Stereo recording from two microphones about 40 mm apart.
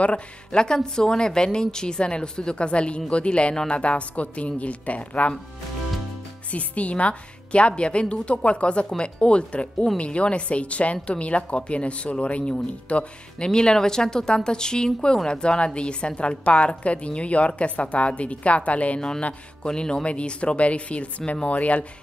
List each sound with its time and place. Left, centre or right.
0.0 s speech: left
0.6 s a woman's voice: centre; by 5.3 s left
6.5 s a woman's voice: left
13.5 s a woman's voice: centre; by 18.9 s left
18.9 s a woman's voice: centre; by 21.8 s left